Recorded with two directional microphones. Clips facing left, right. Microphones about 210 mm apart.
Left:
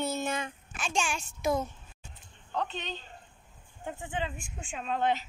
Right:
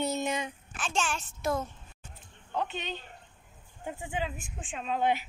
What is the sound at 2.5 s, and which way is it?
Speech, 10° right (ahead or behind).